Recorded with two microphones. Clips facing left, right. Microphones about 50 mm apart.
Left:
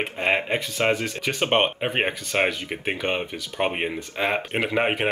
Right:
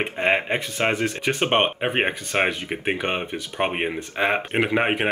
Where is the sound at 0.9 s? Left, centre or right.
Right.